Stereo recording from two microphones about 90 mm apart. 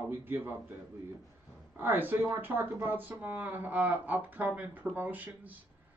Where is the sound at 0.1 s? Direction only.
20° right (ahead or behind).